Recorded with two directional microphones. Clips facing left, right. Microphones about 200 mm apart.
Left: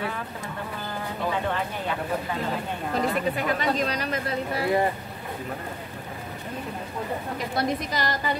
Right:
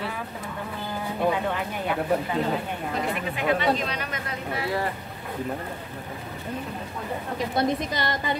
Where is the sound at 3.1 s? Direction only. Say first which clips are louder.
Even; 40° left (ahead or behind).